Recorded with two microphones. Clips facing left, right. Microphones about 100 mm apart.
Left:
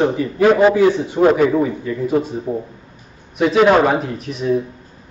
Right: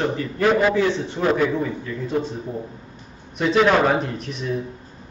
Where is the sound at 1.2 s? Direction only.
30° left (ahead or behind).